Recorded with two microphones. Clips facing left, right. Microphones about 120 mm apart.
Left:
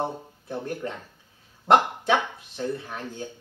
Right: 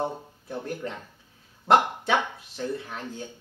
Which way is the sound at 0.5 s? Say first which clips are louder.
Left 2 dB; centre (ahead or behind).